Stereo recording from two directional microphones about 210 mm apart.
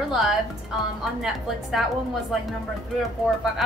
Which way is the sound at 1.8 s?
Centre (ahead or behind).